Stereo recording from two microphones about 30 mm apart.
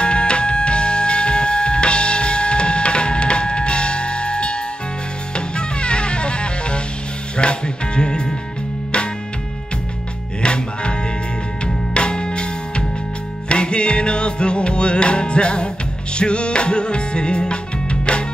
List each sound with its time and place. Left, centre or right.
0.0 s music: left
10.4 s music: left